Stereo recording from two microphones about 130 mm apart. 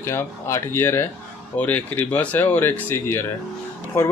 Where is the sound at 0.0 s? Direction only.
20° left (ahead or behind).